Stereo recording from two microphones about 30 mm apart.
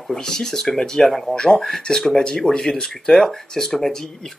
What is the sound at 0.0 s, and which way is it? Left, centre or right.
Speech, centre.